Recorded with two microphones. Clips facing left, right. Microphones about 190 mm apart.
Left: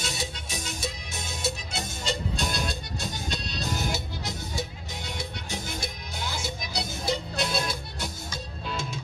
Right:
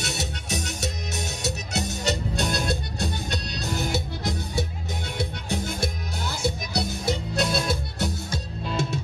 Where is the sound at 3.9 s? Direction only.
60° right (ahead or behind).